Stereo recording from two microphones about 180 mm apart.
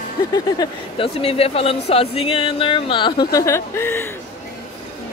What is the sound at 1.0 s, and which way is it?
Speech, 35° left (ahead or behind).